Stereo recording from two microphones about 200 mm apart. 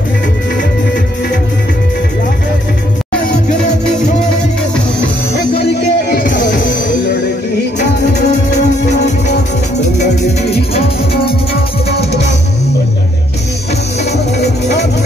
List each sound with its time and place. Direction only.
5.5 s music: 55° left (ahead or behind)
8.5 s music: 55° left (ahead or behind)
9.8 s music: 35° left (ahead or behind)
14.4 s music: 55° left (ahead or behind)